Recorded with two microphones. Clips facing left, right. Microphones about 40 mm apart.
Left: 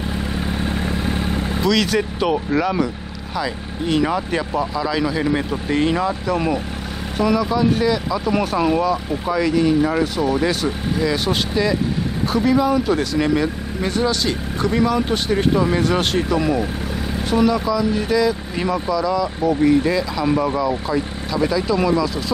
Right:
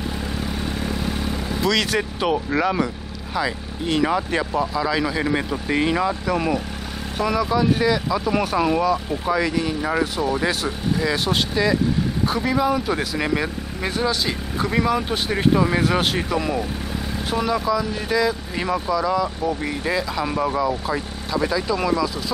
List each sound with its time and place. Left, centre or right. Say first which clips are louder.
0.7 s vehicle: left 3 dB; left
1.6 s speech: left 2 dB; centre
19.4 s speech: left 8 dB; centre